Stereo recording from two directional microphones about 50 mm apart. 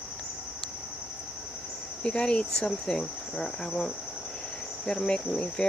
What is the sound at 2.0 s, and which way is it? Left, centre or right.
Speech, centre.